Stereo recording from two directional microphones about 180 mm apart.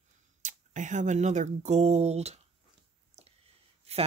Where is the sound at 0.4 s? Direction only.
45° right (ahead or behind).